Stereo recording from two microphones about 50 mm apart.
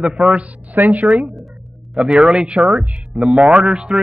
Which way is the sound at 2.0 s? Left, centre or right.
Centre.